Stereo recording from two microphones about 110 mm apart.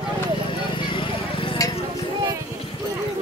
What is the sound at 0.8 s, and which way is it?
Clip-clop, 50° left (ahead or behind).